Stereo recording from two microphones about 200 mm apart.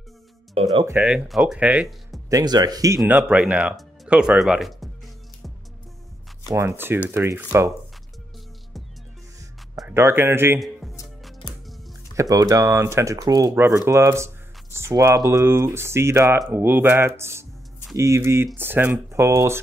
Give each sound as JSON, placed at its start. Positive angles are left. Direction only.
{"t": 0.6, "sound": "speech", "side_deg": -25}
{"t": 0.8, "sound": "speech", "side_deg": -5}
{"t": 2.2, "sound": "speech", "side_deg": -20}
{"t": 3.0, "sound": "speech", "side_deg": -5}
{"t": 6.5, "sound": "speech", "side_deg": -10}
{"t": 9.8, "sound": "speech", "side_deg": -10}
{"t": 12.2, "sound": "speech", "side_deg": -15}